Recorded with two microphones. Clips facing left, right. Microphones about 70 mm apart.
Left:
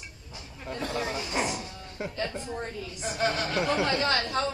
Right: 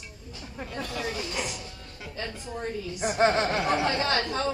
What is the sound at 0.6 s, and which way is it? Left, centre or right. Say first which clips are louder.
Speech: left 2 dB; left.